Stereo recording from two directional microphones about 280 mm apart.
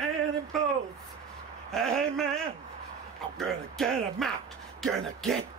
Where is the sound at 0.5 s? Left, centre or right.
Centre.